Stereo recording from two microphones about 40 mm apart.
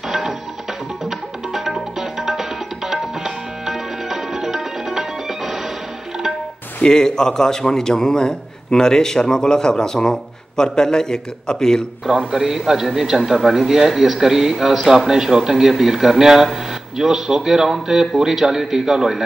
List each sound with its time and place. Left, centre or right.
1.5 s music: centre
2.9 s tabla: centre
6.8 s a man's voice: centre
12.2 s a man's voice: centre